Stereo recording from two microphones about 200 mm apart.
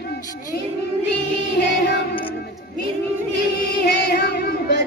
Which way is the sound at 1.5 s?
55° left (ahead or behind).